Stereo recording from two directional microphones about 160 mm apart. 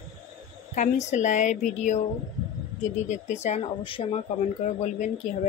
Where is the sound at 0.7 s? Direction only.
50° left (ahead or behind).